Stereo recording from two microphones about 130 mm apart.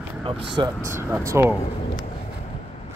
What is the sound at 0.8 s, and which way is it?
Speech, 20° right (ahead or behind).